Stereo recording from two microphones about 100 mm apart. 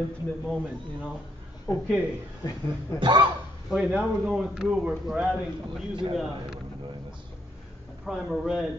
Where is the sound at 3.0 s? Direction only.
55° right (ahead or behind).